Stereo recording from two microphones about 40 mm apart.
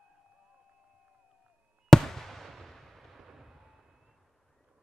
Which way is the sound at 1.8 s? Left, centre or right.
Centre.